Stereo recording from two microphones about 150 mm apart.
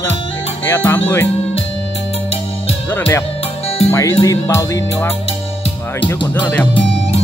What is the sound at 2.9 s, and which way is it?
Speech, 15° left (ahead or behind).